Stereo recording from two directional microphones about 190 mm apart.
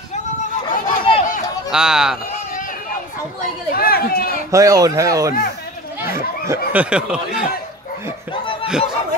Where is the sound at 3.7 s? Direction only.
50° left (ahead or behind).